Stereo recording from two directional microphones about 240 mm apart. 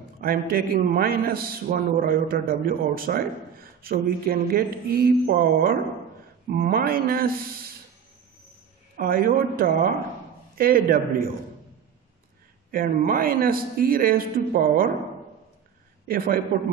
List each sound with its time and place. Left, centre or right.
0.2 s a man's voice: right
8.9 s a man's voice: right
12.7 s a man's voice: right
16.5 s a man's voice: right